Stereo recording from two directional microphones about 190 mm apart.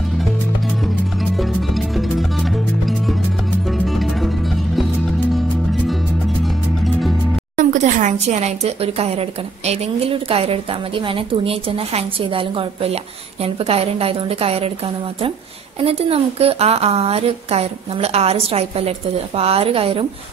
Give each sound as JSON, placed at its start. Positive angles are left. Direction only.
{"t": 1.8, "sound": "music", "side_deg": 0}
{"t": 3.7, "sound": "music", "side_deg": 0}
{"t": 5.3, "sound": "music", "side_deg": 0}
{"t": 7.5, "sound": "a woman's voice", "side_deg": -40}
{"t": 15.8, "sound": "a woman's voice", "side_deg": -30}